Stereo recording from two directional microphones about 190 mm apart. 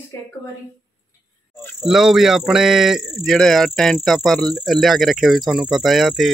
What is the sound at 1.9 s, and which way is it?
Speech, centre (ahead or behind).